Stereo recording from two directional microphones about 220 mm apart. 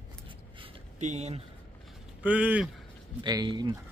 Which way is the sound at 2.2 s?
5° right (ahead or behind).